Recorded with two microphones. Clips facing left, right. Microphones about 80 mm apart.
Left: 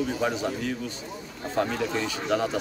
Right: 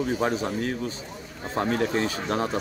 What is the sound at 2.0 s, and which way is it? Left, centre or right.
Speech, right.